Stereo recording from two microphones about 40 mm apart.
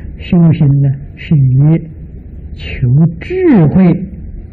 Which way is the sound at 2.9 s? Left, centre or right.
Centre.